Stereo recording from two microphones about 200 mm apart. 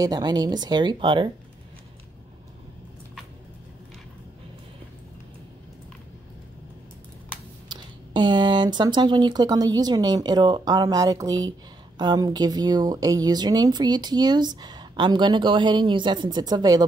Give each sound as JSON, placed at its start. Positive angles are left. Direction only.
{"t": 0.0, "sound": "speech", "side_deg": -20}
{"t": 7.6, "sound": "speech", "side_deg": -20}